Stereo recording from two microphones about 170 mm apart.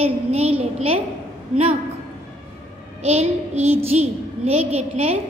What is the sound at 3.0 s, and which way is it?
A woman's voice, 40° right (ahead or behind).